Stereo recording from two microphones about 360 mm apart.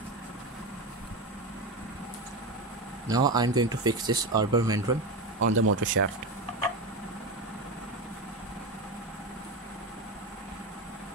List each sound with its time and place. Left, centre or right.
3.1 s speech: centre
5.4 s speech: right